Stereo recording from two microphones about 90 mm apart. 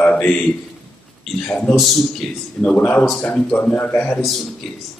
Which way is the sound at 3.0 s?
5° left (ahead or behind).